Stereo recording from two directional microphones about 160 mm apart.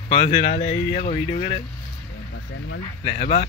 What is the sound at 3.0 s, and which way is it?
Speech, 40° left (ahead or behind).